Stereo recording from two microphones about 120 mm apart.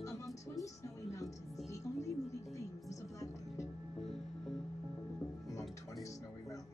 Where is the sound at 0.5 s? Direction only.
30° left (ahead or behind).